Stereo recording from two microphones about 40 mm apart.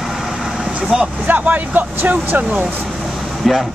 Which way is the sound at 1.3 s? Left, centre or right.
Right.